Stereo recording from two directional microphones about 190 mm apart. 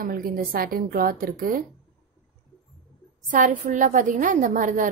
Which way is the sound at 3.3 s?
40° right (ahead or behind).